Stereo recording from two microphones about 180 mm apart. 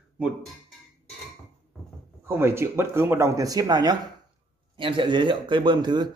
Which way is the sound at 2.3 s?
15° right (ahead or behind).